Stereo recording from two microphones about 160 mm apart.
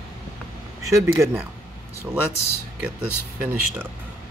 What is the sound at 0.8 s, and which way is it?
Speech, 20° right (ahead or behind).